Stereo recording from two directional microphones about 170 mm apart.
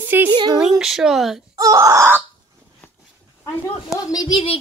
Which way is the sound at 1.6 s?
20° right (ahead or behind).